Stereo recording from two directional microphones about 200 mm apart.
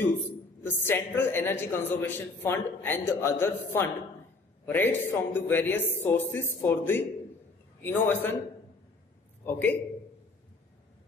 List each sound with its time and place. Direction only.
0.7 s a woman's voice: 10° left (ahead or behind)
9.5 s a woman's voice: 10° left (ahead or behind)